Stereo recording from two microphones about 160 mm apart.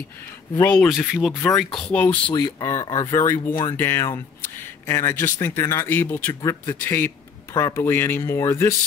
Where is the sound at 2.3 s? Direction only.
20° left (ahead or behind).